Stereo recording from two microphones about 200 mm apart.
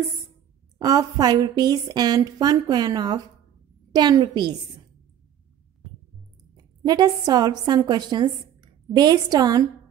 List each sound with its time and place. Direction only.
0.7 s a woman's voice: 20° right (ahead or behind)
6.5 s a woman's voice: 20° right (ahead or behind)